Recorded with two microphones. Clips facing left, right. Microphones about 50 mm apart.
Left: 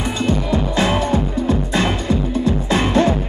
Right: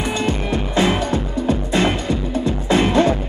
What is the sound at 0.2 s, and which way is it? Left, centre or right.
Music, right.